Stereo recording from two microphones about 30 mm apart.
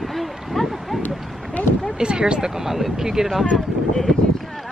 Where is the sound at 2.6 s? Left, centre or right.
Centre.